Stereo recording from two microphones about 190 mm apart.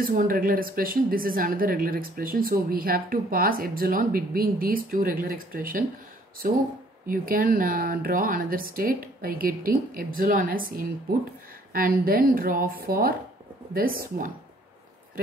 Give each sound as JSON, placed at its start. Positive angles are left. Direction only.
{"t": 0.0, "sound": "a woman's voice", "side_deg": -45}
{"t": 7.1, "sound": "a woman's voice", "side_deg": -50}